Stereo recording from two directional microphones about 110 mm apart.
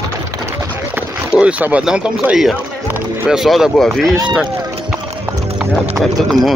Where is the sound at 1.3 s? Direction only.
10° right (ahead or behind).